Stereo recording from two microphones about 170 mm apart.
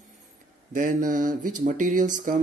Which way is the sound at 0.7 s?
50° right (ahead or behind).